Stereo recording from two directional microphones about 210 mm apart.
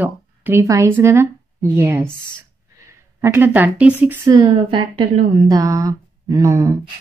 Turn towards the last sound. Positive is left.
turn(degrees=-15)  # may be behind; listen again after turning